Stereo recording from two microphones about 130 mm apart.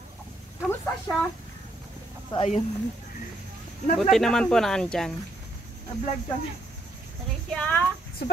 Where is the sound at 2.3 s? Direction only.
35° left (ahead or behind).